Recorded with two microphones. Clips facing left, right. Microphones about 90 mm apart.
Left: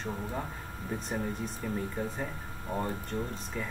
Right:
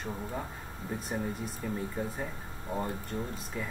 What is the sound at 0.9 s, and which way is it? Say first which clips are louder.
Speech: left 1 dB; 5° right (ahead or behind).